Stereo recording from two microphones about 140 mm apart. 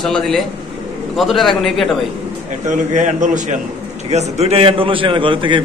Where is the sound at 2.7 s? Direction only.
60° right (ahead or behind).